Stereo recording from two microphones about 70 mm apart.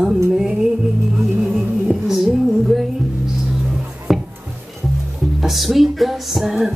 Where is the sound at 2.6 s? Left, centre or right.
Centre.